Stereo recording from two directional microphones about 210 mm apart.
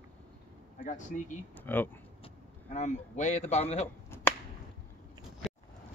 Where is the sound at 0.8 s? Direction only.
35° left (ahead or behind).